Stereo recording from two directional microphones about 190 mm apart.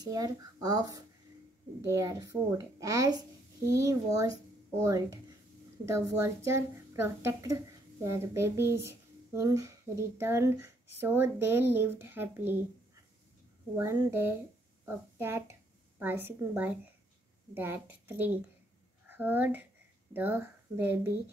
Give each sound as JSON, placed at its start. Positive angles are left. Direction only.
{"t": 0.0, "sound": "a woman's voice", "side_deg": -20}
{"t": 13.7, "sound": "a woman's voice", "side_deg": -15}